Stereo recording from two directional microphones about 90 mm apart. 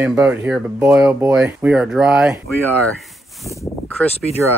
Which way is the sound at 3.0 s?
Centre (ahead or behind).